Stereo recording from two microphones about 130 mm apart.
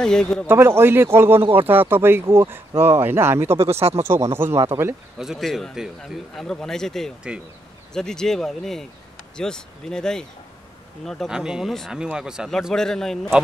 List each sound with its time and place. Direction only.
0.0 s a man's voice: 5° left (ahead or behind)
0.5 s speech: 20° right (ahead or behind)
3.6 s speech: 50° right (ahead or behind)
4.0 s speech: 20° right (ahead or behind)
5.2 s a man's voice: centre (ahead or behind)